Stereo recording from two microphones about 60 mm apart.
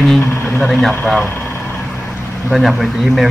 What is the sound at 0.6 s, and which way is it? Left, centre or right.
Speech, left.